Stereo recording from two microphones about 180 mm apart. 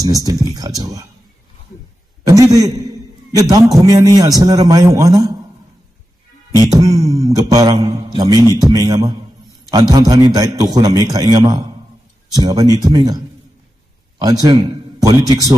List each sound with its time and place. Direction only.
0.0 s a man's voice: 20° right (ahead or behind)
2.2 s a sound: 20° right (ahead or behind)
3.3 s a man's voice: 20° right (ahead or behind)
6.6 s mantra: 20° right (ahead or behind)
8.5 s a man's voice: 20° right (ahead or behind)
12.7 s a man's voice: 20° right (ahead or behind)